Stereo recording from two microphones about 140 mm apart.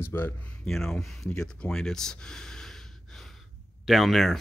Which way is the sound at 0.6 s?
5° left (ahead or behind).